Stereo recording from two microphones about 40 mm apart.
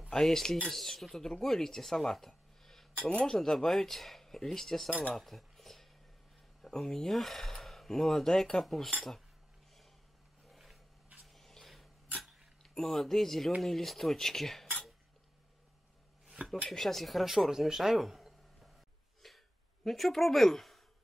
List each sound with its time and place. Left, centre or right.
0.1 s speech: centre
3.0 s speech: left
3.3 s speech: centre
5.1 s cutlery: centre
6.6 s speech: centre
8.6 s speech: centre
10.4 s roaring cats: centre
11.2 s a sound: centre
12.6 s speech: centre
16.6 s speech: centre
19.2 s a sound: centre
19.8 s speech: centre